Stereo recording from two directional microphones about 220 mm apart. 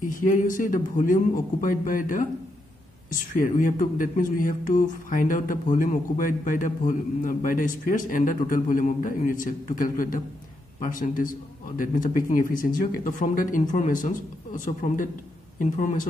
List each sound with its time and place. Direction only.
0.1 s speech: 35° left (ahead or behind)